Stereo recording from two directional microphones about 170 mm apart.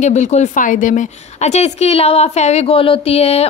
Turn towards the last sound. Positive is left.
turn(degrees=35)  # may be behind; listen again after turning